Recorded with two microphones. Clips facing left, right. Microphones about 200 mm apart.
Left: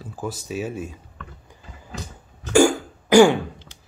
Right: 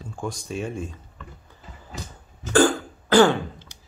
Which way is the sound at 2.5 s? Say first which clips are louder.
Left 2 dB; 10° left (ahead or behind).